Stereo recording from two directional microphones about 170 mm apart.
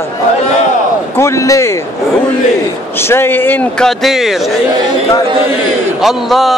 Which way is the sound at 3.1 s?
15° left (ahead or behind).